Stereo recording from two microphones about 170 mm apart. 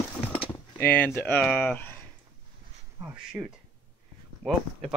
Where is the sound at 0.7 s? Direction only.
10° left (ahead or behind).